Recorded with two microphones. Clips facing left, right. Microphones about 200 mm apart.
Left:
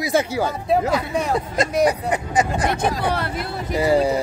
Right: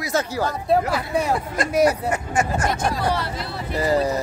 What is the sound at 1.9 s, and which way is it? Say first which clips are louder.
Speech: left 1 dB; 15° left (ahead or behind).